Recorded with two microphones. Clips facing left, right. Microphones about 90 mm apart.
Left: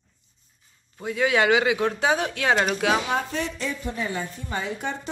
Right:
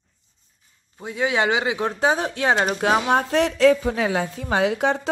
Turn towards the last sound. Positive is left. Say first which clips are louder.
# right 9 dB
turn(degrees=-90)